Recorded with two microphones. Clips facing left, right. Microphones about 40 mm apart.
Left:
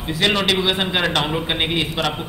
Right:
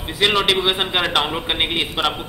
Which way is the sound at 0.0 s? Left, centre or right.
Centre.